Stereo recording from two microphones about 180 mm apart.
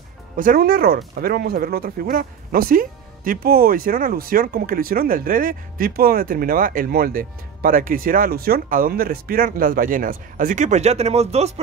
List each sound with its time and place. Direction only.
0.4 s speech: 55° right (ahead or behind); by 11.6 s 35° right (ahead or behind)